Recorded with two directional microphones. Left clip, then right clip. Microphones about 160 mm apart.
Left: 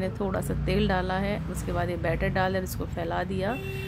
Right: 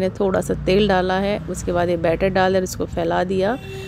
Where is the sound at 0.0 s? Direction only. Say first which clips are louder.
Right 10 dB; 40° right (ahead or behind).